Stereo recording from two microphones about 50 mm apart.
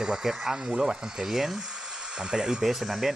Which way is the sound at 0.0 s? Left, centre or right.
Centre.